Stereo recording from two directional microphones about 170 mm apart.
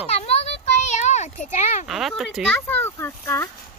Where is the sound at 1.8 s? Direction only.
Centre (ahead or behind).